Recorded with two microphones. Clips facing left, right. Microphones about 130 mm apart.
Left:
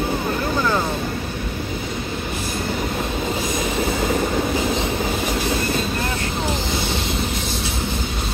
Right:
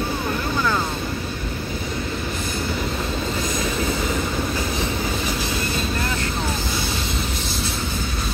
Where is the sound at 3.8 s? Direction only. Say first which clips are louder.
Left 3 dB; 40° left (ahead or behind).